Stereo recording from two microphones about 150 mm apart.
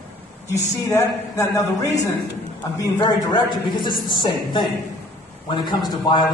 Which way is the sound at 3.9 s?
70° left (ahead or behind).